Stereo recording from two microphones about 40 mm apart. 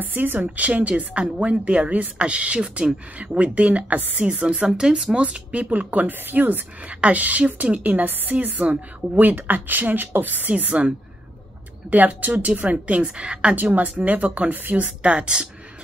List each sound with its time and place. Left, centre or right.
0.0 s speech: right
0.6 s a woman's voice: right
4.6 s speech: centre
5.1 s a woman's voice: right
7.0 s a woman's voice: right
9.5 s speech: right
10.5 s speech: right
11.9 s a woman's voice: right
13.2 s speech: right
14.0 s a woman's voice: right
15.0 s speech: right